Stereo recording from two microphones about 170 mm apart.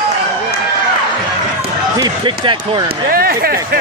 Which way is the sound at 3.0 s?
60° right (ahead or behind).